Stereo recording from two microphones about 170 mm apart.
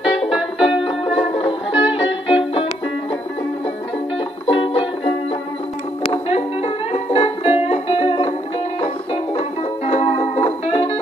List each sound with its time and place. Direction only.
0.2 s music: centre (ahead or behind)
0.8 s music: 35° left (ahead or behind)
4.5 s music: 30° left (ahead or behind)
6.2 s music: 35° left (ahead or behind)